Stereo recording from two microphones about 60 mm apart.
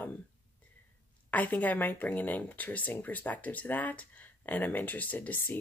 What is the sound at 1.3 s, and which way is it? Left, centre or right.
Speech, left.